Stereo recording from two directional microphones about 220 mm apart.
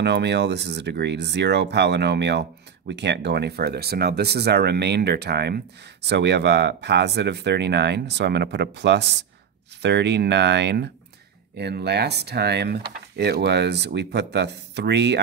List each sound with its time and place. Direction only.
0.0 s speech: 50° right (ahead or behind)